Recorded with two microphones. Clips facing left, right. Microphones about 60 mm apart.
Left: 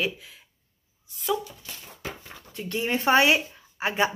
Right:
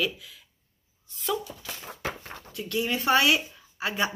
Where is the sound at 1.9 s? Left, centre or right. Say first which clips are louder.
Right 4 dB; right.